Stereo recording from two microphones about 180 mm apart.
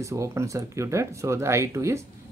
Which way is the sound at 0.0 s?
15° right (ahead or behind).